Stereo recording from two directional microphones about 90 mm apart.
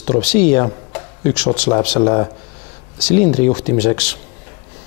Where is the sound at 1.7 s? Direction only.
20° left (ahead or behind).